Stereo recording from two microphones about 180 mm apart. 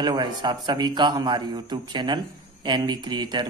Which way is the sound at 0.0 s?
25° right (ahead or behind).